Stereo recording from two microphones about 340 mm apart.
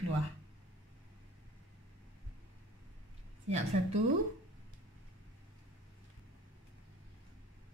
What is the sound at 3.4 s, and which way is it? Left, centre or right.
Speech, centre.